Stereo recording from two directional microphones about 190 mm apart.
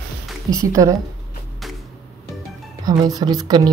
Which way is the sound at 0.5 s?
90° right.